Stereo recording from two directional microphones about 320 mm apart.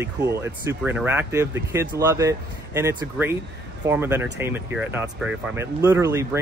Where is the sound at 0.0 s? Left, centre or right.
Centre.